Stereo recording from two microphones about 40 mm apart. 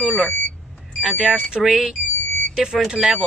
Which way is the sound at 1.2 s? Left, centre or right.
Right.